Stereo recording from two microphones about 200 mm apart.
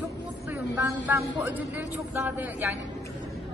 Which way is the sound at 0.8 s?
15° right (ahead or behind).